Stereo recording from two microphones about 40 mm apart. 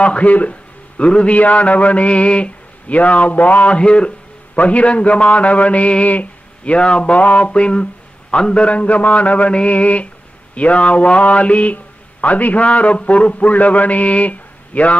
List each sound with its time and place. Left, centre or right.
0.0 s a man's voice: left
3.7 s speech: left